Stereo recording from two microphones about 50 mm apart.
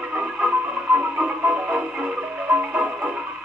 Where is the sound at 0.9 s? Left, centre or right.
Right.